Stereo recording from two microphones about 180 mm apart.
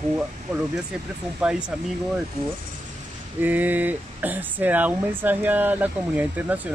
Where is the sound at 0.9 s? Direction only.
5° right (ahead or behind).